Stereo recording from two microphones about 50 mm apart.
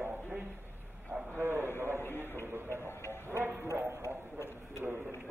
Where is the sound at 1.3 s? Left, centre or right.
Right.